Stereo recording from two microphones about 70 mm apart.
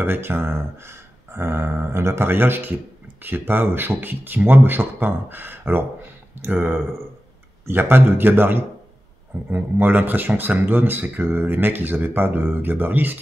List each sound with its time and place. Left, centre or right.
0.0 s speech: right